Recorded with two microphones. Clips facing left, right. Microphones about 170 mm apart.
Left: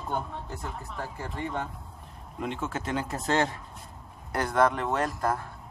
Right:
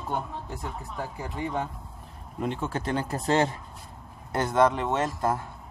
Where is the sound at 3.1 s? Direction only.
30° right (ahead or behind).